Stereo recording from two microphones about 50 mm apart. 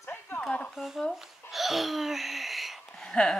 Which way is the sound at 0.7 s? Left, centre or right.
Centre.